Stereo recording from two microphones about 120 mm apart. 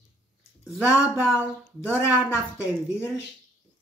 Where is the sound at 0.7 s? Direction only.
5° right (ahead or behind).